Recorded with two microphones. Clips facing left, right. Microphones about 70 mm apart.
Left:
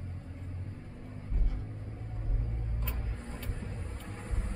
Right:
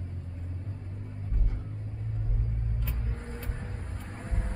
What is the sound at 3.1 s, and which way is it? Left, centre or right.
Vehicle, right.